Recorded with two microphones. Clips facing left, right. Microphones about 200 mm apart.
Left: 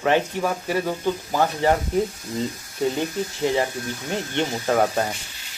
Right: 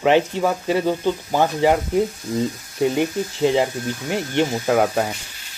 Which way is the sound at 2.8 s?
15° right (ahead or behind).